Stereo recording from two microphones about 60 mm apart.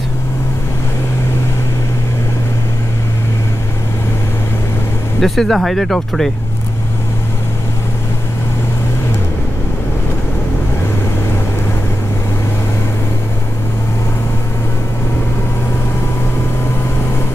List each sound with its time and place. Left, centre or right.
5.2 s speech: centre